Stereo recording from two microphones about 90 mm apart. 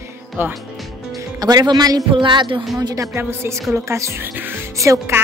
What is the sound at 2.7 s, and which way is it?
Speech, 40° right (ahead or behind).